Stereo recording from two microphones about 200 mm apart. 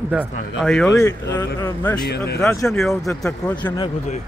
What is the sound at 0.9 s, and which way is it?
Speech, 15° left (ahead or behind).